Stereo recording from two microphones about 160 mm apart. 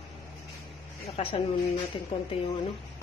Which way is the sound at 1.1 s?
35° left (ahead or behind).